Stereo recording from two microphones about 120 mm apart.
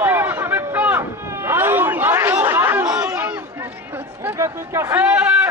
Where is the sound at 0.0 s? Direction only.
15° right (ahead or behind).